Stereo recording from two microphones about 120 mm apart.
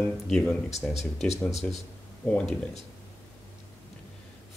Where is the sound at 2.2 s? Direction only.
10° left (ahead or behind).